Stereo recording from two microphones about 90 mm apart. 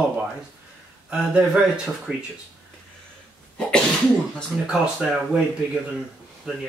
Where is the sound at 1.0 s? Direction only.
10° right (ahead or behind).